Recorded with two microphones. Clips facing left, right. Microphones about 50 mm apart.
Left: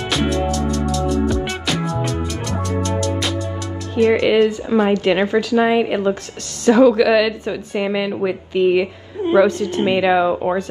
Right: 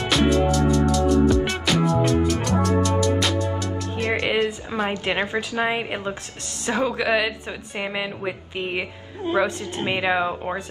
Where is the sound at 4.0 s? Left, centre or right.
Centre.